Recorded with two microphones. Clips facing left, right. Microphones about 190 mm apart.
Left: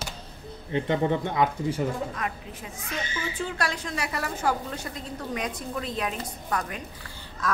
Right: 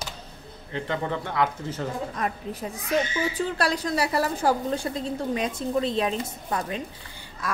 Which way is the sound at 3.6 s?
35° right (ahead or behind).